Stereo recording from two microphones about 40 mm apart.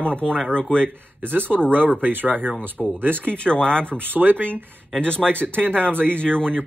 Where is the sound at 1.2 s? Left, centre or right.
Right.